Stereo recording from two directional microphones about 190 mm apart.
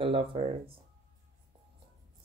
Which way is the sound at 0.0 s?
30° right (ahead or behind).